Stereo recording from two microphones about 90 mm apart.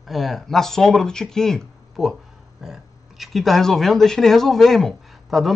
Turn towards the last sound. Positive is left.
turn(degrees=0)  # may be behind; listen again after turning